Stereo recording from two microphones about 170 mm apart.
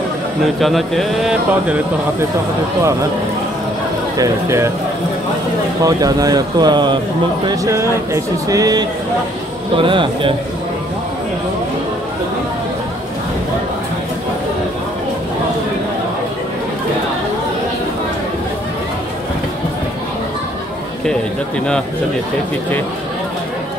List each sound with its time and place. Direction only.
0.6 s speech: centre (ahead or behind)
4.2 s speech: 15° right (ahead or behind)
5.9 s speech: 20° right (ahead or behind)